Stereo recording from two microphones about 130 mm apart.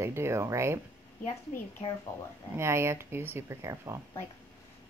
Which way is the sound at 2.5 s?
20° right (ahead or behind).